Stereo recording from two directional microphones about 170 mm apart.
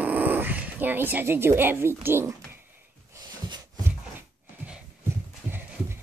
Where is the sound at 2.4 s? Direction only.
15° right (ahead or behind).